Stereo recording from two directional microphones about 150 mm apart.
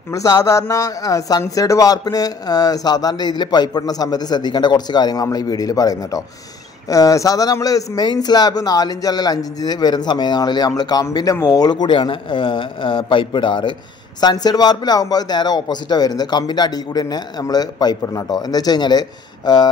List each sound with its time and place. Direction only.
0.1 s a man's voice: 25° left (ahead or behind)